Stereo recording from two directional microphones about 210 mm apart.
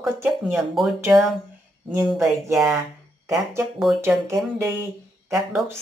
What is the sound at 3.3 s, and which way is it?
Speech, 15° right (ahead or behind).